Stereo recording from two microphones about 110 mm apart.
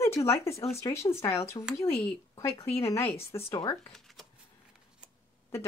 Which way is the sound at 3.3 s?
35° left (ahead or behind).